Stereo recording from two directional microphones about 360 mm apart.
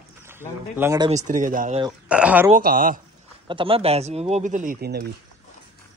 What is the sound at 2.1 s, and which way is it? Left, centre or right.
Speech, centre.